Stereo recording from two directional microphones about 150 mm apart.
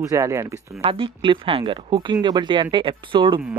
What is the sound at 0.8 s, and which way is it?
Speech, 35° right (ahead or behind).